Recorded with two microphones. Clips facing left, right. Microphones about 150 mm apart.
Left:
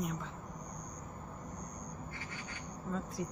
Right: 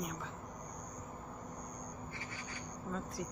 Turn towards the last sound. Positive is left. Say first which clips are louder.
# left 3 dB
turn(degrees=0)  # may be behind; listen again after turning